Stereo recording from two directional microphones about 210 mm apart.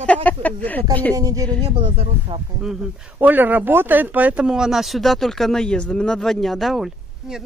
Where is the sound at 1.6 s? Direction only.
25° right (ahead or behind).